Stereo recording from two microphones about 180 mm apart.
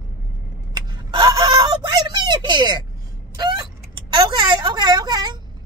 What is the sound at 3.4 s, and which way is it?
Vehicle, 25° right (ahead or behind).